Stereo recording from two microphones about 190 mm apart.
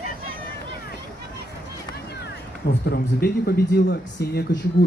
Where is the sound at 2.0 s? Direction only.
60° left (ahead or behind).